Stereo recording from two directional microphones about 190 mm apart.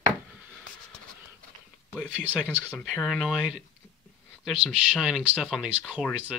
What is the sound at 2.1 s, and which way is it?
Speech, 5° right (ahead or behind).